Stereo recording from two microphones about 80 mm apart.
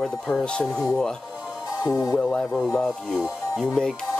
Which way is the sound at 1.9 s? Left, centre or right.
Left.